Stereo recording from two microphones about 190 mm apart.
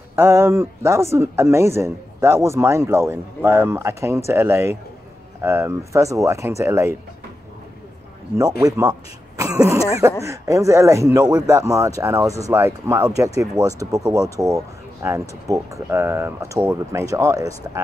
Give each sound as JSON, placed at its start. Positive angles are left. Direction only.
{"t": 0.1, "sound": "speech", "side_deg": -15}
{"t": 8.6, "sound": "speech", "side_deg": -20}